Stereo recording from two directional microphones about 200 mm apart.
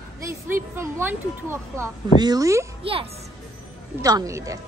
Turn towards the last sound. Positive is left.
turn(degrees=-15)  # may be behind; listen again after turning